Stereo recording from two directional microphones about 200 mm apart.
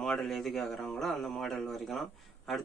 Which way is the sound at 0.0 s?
Centre (ahead or behind).